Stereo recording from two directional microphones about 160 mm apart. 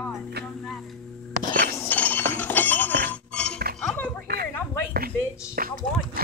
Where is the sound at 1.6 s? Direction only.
15° left (ahead or behind).